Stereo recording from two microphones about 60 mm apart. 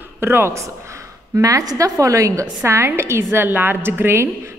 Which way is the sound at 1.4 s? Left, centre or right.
Right.